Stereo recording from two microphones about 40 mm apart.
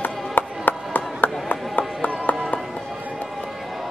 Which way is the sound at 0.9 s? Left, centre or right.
Left.